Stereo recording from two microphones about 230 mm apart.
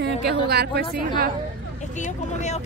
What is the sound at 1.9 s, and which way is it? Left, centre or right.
Speech, left.